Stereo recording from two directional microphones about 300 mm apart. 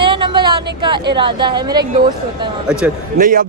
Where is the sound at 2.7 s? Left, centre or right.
Centre.